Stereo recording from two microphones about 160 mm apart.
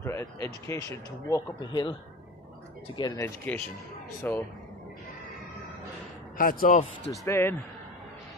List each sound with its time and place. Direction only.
0.0 s speech: 20° left (ahead or behind)
3.0 s speech: 25° left (ahead or behind)
3.5 s speech: 10° left (ahead or behind)
6.3 s speech: 60° left (ahead or behind)
7.2 s speech: 15° left (ahead or behind)